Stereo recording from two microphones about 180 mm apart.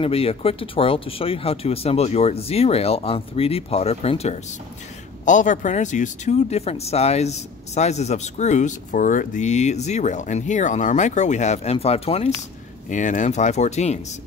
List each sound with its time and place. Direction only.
0.0 s speech: 30° left (ahead or behind)
5.2 s speech: 45° left (ahead or behind)